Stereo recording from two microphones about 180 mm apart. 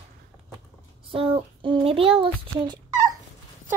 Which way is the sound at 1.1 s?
30° right (ahead or behind).